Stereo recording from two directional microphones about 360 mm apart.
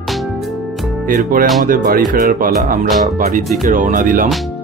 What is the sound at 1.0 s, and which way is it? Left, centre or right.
Speech, right.